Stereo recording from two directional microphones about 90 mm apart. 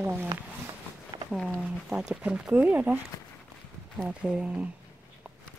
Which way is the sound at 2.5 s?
20° right (ahead or behind).